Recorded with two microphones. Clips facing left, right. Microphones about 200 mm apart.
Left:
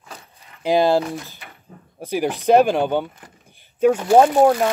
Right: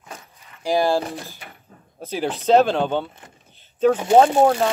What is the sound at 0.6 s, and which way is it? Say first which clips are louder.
Speech: left 3 dB; 20° left (ahead or behind).